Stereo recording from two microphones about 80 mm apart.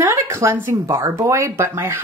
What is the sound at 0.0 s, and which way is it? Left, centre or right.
Speech, right.